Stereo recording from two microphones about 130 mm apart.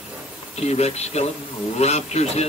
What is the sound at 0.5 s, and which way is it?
Speech, 55° left (ahead or behind).